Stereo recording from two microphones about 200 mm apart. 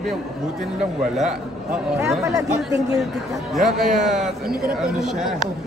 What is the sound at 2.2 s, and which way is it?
Speech, 15° right (ahead or behind).